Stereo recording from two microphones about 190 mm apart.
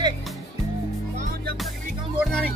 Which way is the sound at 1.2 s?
50° right (ahead or behind).